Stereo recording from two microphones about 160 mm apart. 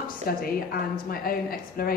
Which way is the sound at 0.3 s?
70° left (ahead or behind).